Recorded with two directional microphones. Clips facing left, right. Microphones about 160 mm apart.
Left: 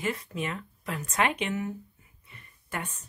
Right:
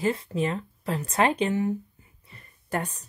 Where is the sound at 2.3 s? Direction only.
35° right (ahead or behind).